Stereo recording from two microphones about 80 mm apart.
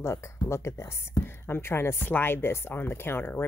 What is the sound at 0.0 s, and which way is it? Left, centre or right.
Speech, left.